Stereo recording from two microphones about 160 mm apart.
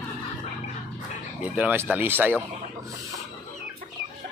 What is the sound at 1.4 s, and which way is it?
Speech, 10° right (ahead or behind).